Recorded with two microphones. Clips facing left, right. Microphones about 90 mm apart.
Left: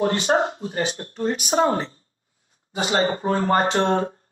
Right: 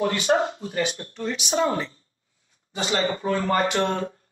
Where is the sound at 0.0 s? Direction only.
35° left (ahead or behind).